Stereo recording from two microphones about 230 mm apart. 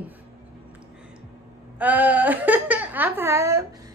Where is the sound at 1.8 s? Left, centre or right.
Centre.